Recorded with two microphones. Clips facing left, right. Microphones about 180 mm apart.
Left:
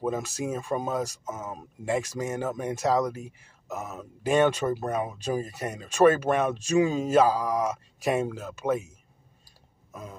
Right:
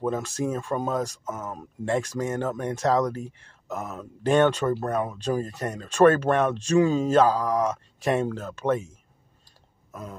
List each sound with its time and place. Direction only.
0.0 s speech: 5° left (ahead or behind)
1.2 s speech: 15° left (ahead or behind)
1.9 s speech: 5° left (ahead or behind)